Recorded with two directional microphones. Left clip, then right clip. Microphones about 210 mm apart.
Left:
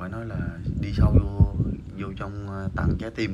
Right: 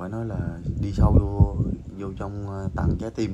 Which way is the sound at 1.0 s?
20° right (ahead or behind).